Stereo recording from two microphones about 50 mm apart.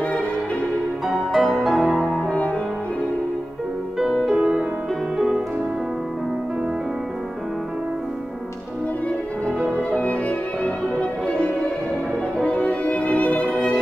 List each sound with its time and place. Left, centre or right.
1.0 s music: centre
4.0 s music: centre
4.4 s music: right
9.8 s violin: left